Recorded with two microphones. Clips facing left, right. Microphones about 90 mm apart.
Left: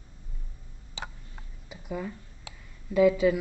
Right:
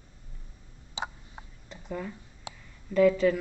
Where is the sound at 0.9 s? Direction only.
20° right (ahead or behind).